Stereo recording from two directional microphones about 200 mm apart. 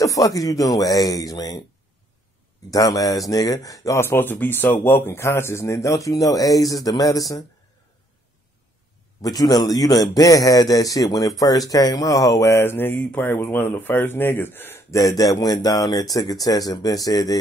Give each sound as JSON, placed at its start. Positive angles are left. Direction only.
{"t": 0.0, "sound": "a man's voice", "side_deg": 15}
{"t": 2.7, "sound": "a man's voice", "side_deg": 15}
{"t": 9.2, "sound": "a man's voice", "side_deg": 20}